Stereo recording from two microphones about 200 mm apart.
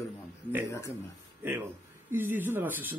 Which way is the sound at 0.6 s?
15° left (ahead or behind).